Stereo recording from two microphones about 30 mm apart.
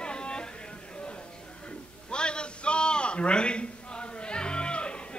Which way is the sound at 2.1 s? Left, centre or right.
Left.